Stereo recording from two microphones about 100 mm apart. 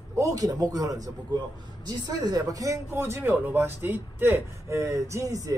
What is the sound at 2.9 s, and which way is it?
Speech, 25° right (ahead or behind).